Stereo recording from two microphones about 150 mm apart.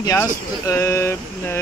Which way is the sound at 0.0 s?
20° left (ahead or behind).